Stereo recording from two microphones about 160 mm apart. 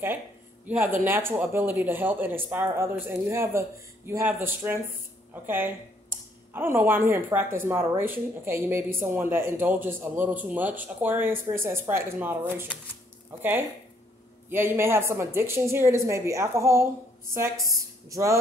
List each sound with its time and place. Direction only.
0.7 s a woman's voice: 10° right (ahead or behind)